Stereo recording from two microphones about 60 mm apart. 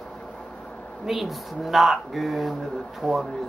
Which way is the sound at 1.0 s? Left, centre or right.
Centre.